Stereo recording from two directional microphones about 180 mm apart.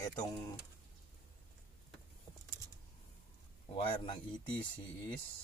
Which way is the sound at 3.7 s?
30° left (ahead or behind).